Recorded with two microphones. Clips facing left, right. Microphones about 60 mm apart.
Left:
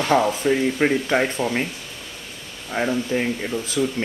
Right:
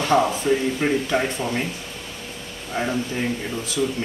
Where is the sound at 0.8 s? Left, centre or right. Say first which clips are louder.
Left 2 dB; left.